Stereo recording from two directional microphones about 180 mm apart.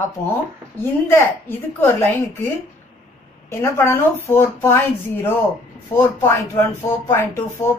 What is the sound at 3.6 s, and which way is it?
Speech, 15° left (ahead or behind).